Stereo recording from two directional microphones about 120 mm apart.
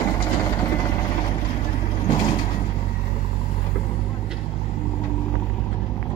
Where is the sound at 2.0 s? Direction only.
40° left (ahead or behind).